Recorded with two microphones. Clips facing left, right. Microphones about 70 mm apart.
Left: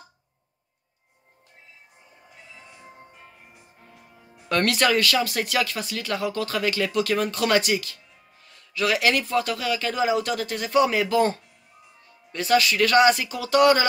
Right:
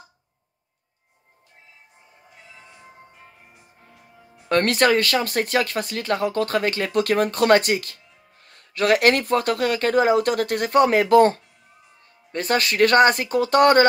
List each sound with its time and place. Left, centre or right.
4.5 s speech: right